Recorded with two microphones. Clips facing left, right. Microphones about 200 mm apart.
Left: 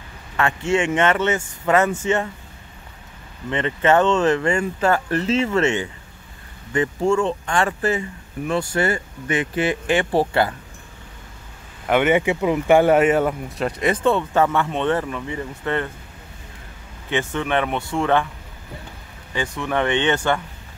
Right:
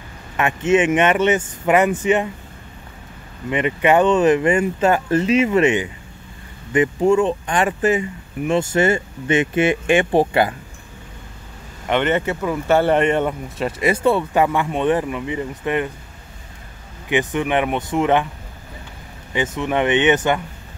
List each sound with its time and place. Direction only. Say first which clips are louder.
0.4 s speech: right 4 dB; 20° right (ahead or behind)
3.4 s speech: right 2 dB; 15° right (ahead or behind)
11.9 s speech: left 2 dB; 10° left (ahead or behind); by 15.9 s 15° right (ahead or behind)
17.1 s speech: right 3 dB; 15° right (ahead or behind)
19.3 s speech: right 3 dB; 20° right (ahead or behind)